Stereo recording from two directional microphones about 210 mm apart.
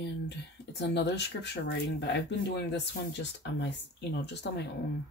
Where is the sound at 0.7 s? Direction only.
55° left (ahead or behind).